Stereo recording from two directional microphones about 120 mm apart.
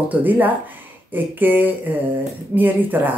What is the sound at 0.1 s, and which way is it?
Speech, 15° right (ahead or behind).